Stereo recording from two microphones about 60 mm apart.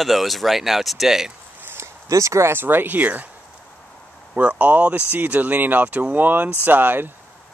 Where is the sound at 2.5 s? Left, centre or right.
Right.